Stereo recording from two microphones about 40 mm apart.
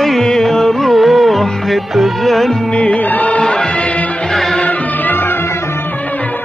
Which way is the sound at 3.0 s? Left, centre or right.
Left.